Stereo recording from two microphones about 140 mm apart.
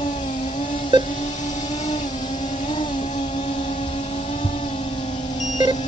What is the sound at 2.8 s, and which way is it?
Vehicle, 35° left (ahead or behind).